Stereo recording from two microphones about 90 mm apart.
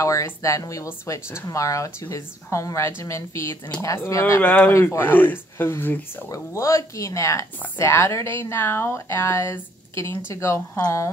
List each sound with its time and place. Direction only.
0.0 s speech: 35° left (ahead or behind)
4.4 s speech: 15° left (ahead or behind)
6.2 s speech: 35° left (ahead or behind)